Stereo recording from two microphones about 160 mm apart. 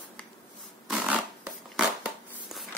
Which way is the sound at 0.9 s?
5° right (ahead or behind).